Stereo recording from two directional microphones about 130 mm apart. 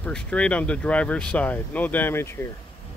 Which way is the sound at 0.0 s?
10° left (ahead or behind).